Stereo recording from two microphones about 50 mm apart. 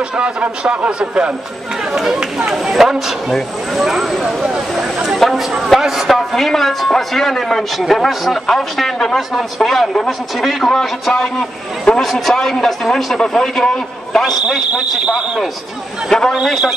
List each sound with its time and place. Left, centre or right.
0.1 s speech: centre
2.3 s a man's voice: centre
5.2 s a man's voice: centre
6.1 s a man's voice: centre
14.2 s a man's voice: centre
16.1 s a man's voice: centre